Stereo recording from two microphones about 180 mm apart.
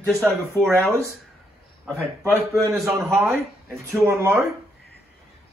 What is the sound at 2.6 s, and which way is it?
Speech, 15° right (ahead or behind).